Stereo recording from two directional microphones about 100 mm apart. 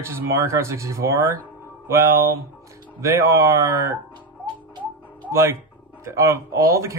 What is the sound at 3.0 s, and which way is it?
Speech, 30° right (ahead or behind).